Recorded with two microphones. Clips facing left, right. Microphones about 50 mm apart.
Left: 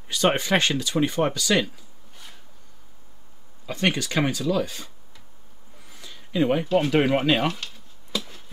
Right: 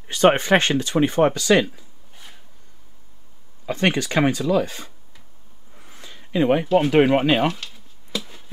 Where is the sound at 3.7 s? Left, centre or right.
Right.